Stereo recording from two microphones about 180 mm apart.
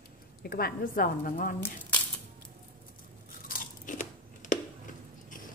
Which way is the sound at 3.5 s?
50° left (ahead or behind).